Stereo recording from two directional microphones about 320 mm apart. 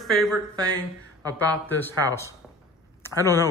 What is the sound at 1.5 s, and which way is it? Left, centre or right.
Speech, centre.